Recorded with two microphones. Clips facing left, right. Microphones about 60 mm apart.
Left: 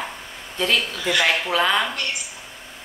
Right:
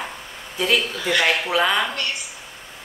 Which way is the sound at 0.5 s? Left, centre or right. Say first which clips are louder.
Right 1 dB; centre.